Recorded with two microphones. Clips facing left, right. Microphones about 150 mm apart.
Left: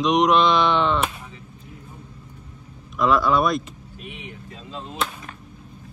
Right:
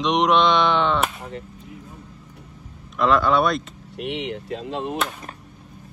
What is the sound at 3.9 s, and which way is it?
Speech, 75° right (ahead or behind).